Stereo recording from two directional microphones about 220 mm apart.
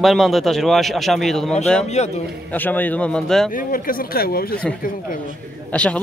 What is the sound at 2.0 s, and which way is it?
Speech, 30° left (ahead or behind).